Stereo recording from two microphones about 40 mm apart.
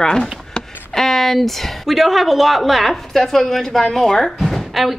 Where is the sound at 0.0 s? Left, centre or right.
Centre.